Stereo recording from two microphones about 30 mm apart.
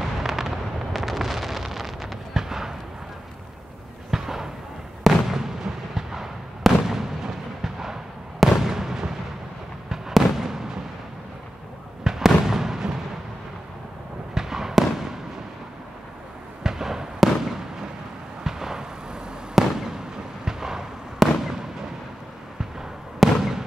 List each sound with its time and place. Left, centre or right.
0.0 s fireworks: centre
4.1 s fireworks: centre
10.3 s fireworks: centre
12.0 s fireworks: centre
14.3 s fireworks: centre
16.6 s fireworks: centre
17.2 s fireworks: centre
18.4 s fireworks: centre
20.4 s a sound: centre
21.2 s fireworks: centre
23.2 s fireworks: centre